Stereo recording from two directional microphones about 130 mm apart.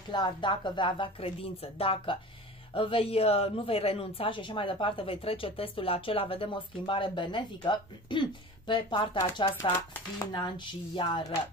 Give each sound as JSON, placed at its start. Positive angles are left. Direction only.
{"t": 0.1, "sound": "a woman's voice", "side_deg": 35}
{"t": 9.6, "sound": "a woman's voice", "side_deg": 25}